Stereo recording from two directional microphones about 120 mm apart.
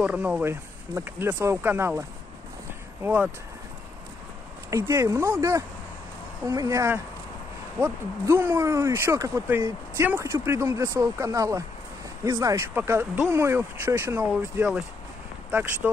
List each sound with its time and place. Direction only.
0.0 s speech: 10° right (ahead or behind)
4.6 s speech: 25° right (ahead or behind)
15.5 s speech: 15° right (ahead or behind)